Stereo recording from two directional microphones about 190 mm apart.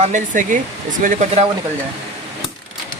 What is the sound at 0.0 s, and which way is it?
Speech, 40° right (ahead or behind).